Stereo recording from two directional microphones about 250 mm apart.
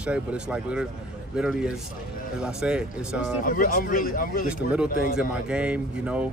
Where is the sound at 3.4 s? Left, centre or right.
Left.